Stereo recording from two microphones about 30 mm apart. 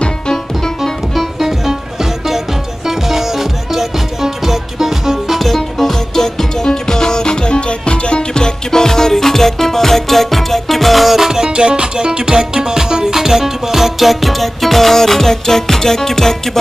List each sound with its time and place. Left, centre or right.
2.9 s music: centre
5.4 s music: centre
6.7 s music: left; by 11.1 s centre
11.1 s music: centre
11.5 s music: right; by 16.3 s centre